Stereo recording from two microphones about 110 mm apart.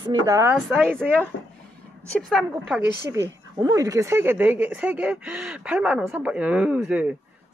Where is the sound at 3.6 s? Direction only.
30° right (ahead or behind).